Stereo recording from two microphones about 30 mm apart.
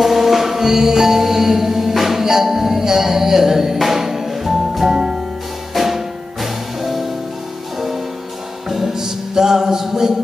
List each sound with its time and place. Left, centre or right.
0.0 s music: centre
4.8 s music: right
5.8 s music: centre
8.6 s music: centre